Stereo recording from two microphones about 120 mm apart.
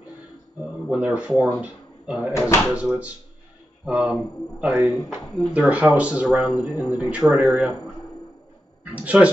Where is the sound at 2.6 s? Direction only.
15° right (ahead or behind).